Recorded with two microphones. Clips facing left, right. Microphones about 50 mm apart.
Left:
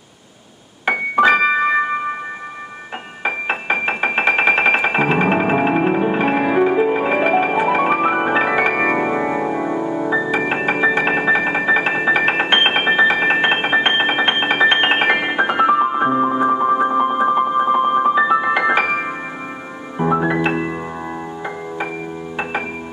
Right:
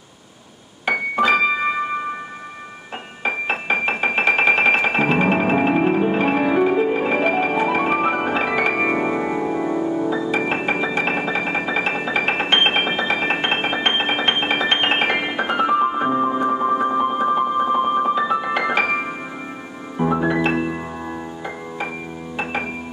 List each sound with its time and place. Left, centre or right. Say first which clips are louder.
0.8 s keyboard: left 4 dB; centre
3.3 s music: left 1 dB; centre
10.0 s music: left 3 dB; left
10.3 s music: left 2 dB; centre